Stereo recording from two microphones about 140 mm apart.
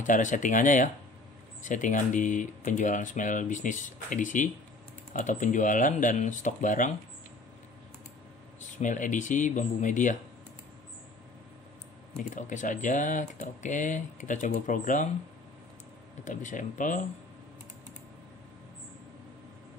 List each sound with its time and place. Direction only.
0.0 s speech: 65° left (ahead or behind)
8.7 s speech: 65° left (ahead or behind)
12.2 s speech: 65° left (ahead or behind)
16.3 s speech: 65° left (ahead or behind)